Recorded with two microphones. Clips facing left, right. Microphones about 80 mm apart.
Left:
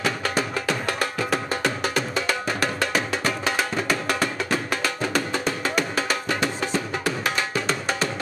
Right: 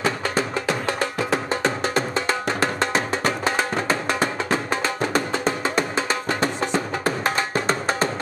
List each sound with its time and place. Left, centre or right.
0.0 s music: right